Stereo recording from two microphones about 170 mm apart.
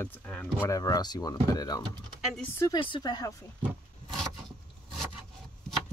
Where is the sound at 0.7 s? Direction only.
20° left (ahead or behind).